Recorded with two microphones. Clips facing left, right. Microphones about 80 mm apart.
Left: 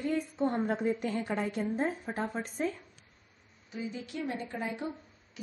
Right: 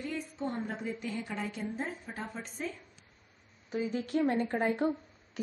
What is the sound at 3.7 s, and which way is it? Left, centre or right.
A woman's voice, right.